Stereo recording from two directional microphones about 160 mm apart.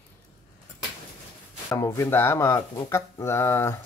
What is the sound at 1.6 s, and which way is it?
Speech, 20° left (ahead or behind).